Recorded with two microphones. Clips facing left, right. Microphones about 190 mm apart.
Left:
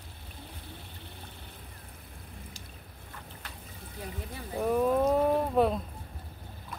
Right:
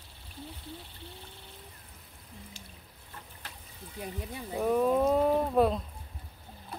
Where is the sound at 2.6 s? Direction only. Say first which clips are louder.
Left 1 dB; 40° left (ahead or behind).